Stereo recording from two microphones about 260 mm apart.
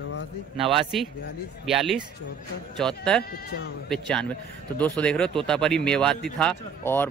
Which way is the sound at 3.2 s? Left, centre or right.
Left.